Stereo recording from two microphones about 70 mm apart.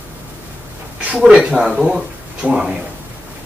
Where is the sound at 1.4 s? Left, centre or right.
Centre.